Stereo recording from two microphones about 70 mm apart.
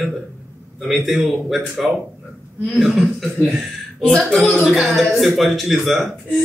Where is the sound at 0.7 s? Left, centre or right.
Centre.